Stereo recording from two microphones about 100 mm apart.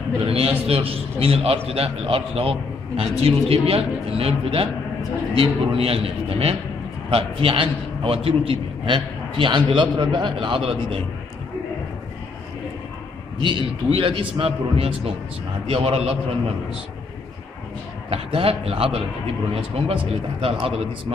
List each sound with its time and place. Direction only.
0.2 s a man's voice: 80° right
13.4 s a man's voice: 50° right (ahead or behind)
13.8 s a man's voice: 65° right (ahead or behind)
15.6 s a man's voice: 85° right
18.1 s a man's voice: 70° right (ahead or behind)
20.3 s a man's voice: 70° right (ahead or behind)